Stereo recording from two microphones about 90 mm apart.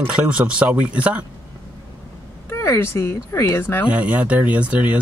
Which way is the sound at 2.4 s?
35° left (ahead or behind).